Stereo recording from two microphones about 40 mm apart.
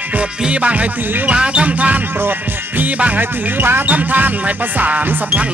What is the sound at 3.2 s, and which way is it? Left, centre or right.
Music, right.